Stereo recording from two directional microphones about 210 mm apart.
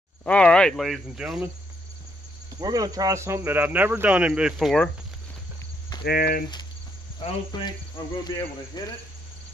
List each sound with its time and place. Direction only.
0.2 s speech: 5° left (ahead or behind)
2.5 s speech: 15° right (ahead or behind); by 4.9 s centre (ahead or behind)
6.0 s speech: 45° left (ahead or behind)
7.2 s cricket: 25° left (ahead or behind)